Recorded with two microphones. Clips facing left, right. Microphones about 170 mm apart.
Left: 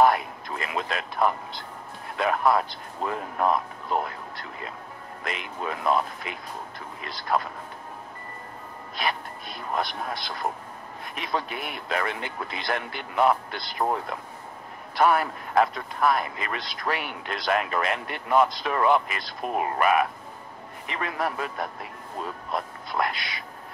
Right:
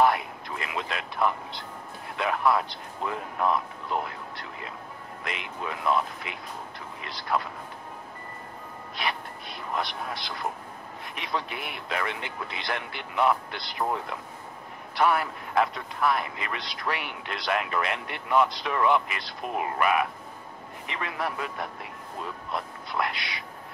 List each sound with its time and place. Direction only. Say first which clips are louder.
0.0 s speech: left 3 dB; 45° left (ahead or behind)
8.9 s speech: left 3 dB; 45° left (ahead or behind)